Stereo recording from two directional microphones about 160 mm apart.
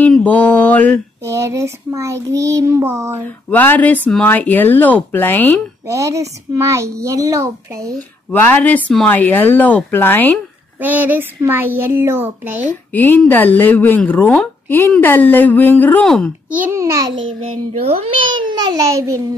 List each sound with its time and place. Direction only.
0.0 s mantra: 10° left (ahead or behind)
1.2 s child singing: 20° right (ahead or behind)
3.3 s a woman's voice: 10° left (ahead or behind)
5.9 s speech: 20° right (ahead or behind)
8.3 s a woman's voice: 10° left (ahead or behind)
10.8 s child singing: 10° right (ahead or behind)
12.9 s a woman's voice: 10° left (ahead or behind)
16.4 s child singing: 10° right (ahead or behind)
17.5 s speech: 35° right (ahead or behind); by 19.2 s 20° right (ahead or behind)